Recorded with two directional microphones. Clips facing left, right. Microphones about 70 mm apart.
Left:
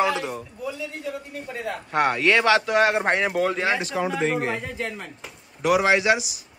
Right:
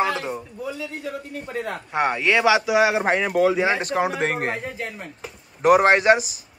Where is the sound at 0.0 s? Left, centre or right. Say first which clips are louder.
Even; right.